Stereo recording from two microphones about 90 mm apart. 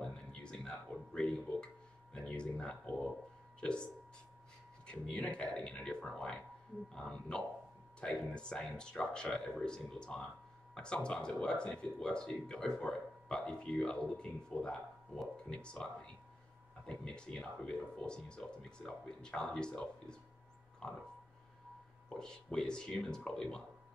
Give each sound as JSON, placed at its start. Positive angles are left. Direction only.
{"t": 0.0, "sound": "music", "side_deg": 10}
{"t": 2.1, "sound": "speech", "side_deg": 10}
{"t": 4.8, "sound": "speech", "side_deg": 10}
{"t": 22.1, "sound": "speech", "side_deg": 10}